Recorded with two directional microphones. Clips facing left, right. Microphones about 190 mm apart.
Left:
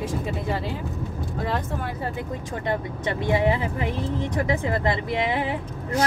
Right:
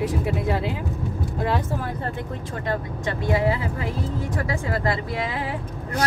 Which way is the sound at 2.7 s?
20° left (ahead or behind).